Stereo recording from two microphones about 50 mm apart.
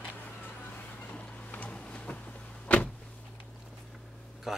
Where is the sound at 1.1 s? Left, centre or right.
Left.